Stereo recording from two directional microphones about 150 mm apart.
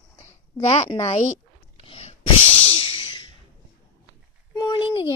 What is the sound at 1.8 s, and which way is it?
Sneeze, 40° left (ahead or behind).